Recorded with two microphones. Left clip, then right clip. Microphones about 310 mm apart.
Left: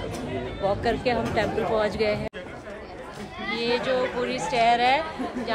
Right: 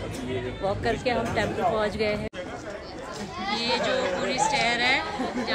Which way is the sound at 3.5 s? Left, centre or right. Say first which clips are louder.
Left 1 dB; centre.